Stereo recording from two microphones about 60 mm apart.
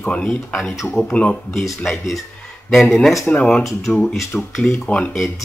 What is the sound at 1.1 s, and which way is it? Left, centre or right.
Speech, left.